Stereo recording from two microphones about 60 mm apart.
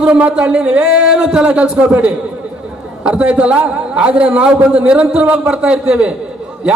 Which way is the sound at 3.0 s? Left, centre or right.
Centre.